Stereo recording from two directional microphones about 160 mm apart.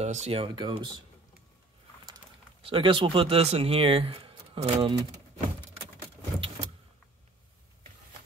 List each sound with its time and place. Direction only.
0.0 s speech: 45° right (ahead or behind)
2.6 s speech: 30° right (ahead or behind)